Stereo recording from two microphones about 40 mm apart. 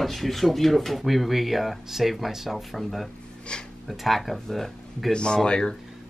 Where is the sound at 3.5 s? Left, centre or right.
Left.